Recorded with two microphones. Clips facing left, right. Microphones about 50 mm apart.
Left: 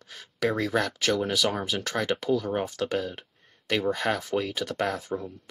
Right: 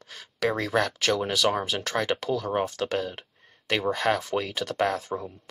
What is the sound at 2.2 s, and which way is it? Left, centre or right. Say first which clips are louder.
Speech: even; centre.